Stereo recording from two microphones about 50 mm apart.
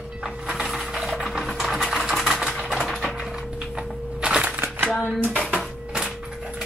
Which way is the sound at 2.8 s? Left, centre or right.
Centre.